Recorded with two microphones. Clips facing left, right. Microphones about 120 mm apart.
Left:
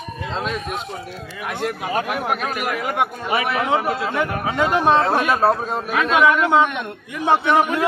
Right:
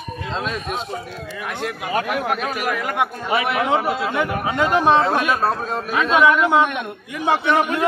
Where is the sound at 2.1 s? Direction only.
Centre (ahead or behind).